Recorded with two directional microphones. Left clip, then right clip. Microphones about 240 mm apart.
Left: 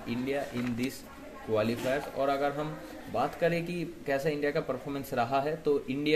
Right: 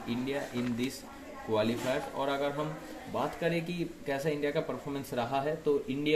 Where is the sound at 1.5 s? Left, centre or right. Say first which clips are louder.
Left 1 dB; centre.